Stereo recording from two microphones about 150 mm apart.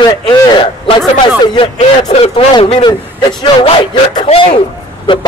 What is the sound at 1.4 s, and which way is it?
A man's voice, 35° left (ahead or behind).